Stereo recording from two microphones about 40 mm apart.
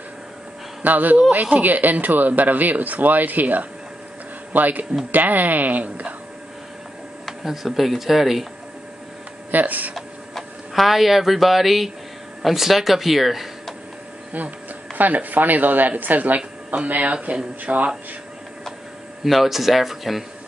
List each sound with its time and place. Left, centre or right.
0.8 s speech: right
7.4 s speech: centre
9.5 s speech: right
9.9 s speech: centre
15.0 s speech: right
16.3 s speech: right
19.2 s speech: centre